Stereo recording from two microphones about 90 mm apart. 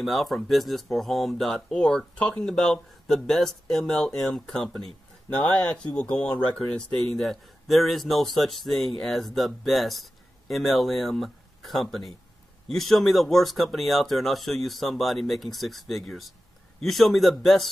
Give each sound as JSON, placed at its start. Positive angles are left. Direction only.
{"t": 0.0, "sound": "speech", "side_deg": 0}